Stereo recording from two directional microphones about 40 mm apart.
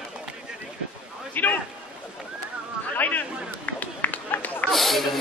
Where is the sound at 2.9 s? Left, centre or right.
Left.